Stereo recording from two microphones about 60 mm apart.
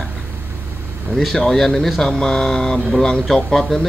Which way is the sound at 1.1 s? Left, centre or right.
Centre.